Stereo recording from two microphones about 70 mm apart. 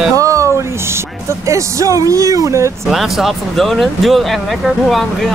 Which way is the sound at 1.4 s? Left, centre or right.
Right.